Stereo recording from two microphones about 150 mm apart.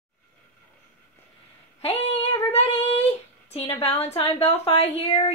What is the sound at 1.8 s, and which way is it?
Child singing, 45° left (ahead or behind).